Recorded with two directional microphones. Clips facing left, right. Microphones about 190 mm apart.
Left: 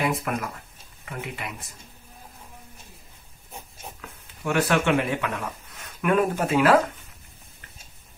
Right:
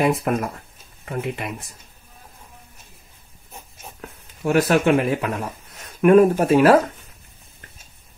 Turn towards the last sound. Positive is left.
turn(degrees=-40)  # may be behind; listen again after turning